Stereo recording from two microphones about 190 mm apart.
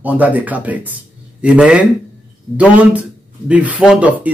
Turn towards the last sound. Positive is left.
turn(degrees=-10)  # may be behind; listen again after turning